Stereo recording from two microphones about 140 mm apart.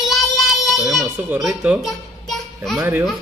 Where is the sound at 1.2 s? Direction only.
10° right (ahead or behind).